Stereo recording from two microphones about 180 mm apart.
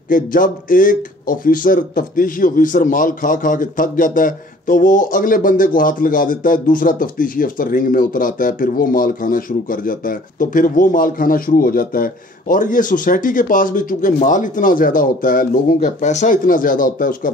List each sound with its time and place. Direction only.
0.1 s speech: 50° left (ahead or behind)